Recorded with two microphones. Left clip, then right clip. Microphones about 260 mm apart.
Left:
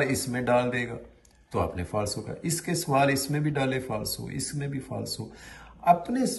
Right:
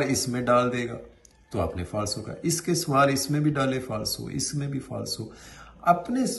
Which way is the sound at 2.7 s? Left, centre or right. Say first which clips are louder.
Right 2 dB; centre.